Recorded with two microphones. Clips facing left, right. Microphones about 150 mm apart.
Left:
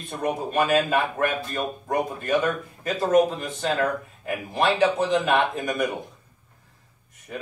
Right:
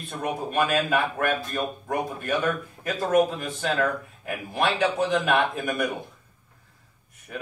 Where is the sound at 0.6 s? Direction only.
15° left (ahead or behind).